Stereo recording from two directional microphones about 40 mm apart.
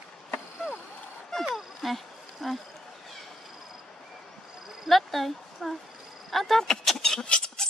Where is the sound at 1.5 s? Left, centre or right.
Centre.